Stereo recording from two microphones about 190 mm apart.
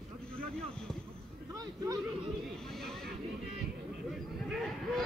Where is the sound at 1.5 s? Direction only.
20° right (ahead or behind).